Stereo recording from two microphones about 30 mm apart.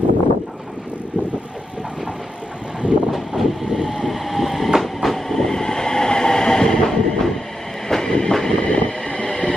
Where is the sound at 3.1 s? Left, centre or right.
Centre.